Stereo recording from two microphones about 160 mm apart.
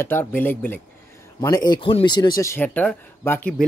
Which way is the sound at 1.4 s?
25° left (ahead or behind).